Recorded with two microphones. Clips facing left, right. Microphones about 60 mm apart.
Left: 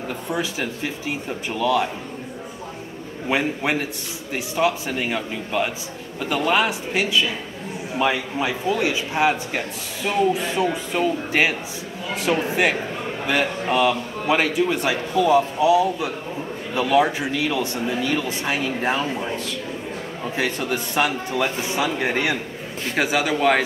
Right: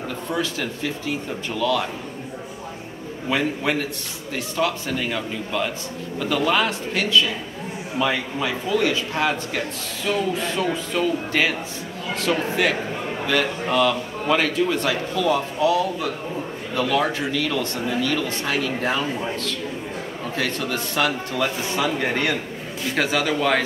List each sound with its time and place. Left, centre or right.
0.3 s speech: centre
3.3 s speech: left